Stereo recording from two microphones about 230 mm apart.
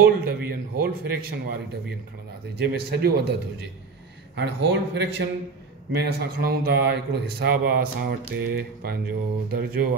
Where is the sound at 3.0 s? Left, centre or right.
Right.